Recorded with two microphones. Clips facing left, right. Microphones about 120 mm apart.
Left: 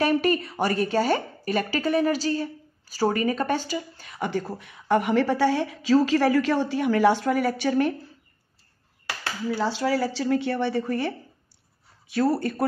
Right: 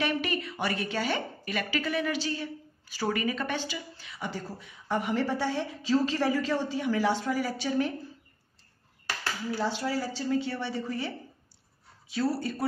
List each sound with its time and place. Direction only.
0.0 s a woman's voice: 40° left (ahead or behind); by 7.9 s 65° left (ahead or behind)
9.6 s a woman's voice: 90° left; by 12.6 s 55° left (ahead or behind)